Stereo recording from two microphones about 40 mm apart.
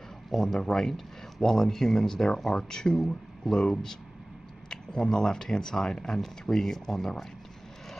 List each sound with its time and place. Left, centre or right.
0.3 s speech: centre